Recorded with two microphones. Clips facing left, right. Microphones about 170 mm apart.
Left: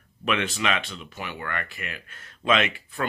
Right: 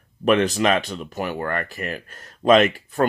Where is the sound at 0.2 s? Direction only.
40° right (ahead or behind).